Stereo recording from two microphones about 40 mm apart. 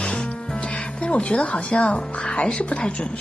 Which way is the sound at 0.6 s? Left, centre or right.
Left.